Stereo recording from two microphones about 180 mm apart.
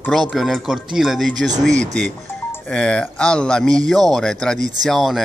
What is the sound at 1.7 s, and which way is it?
Speech, 40° right (ahead or behind).